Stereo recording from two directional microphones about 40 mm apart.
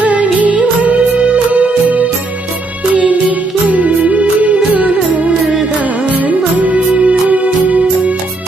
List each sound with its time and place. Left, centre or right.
0.0 s music: right